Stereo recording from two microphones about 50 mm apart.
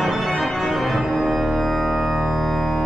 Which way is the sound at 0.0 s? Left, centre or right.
Centre.